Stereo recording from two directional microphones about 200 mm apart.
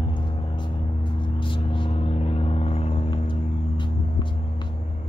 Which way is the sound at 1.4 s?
25° left (ahead or behind).